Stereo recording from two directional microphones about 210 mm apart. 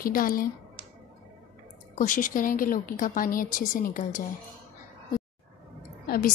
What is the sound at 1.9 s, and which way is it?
A woman's voice, 40° left (ahead or behind).